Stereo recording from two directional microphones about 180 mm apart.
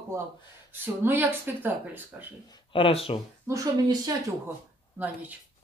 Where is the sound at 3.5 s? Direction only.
15° right (ahead or behind).